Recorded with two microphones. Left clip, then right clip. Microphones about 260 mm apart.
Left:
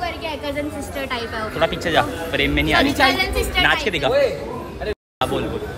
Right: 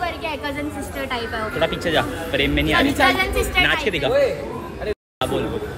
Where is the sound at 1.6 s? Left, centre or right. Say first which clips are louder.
Left 2 dB; centre.